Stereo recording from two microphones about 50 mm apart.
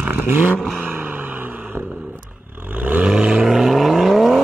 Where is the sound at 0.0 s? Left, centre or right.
Right.